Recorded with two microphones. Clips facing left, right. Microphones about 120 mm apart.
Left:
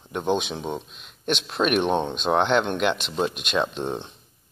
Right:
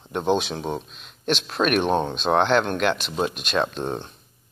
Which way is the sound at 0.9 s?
5° left (ahead or behind).